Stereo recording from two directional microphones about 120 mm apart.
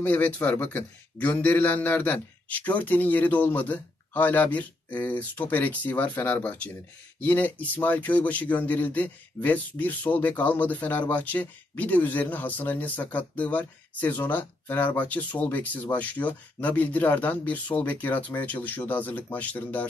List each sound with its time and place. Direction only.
0.0 s speech: 15° left (ahead or behind)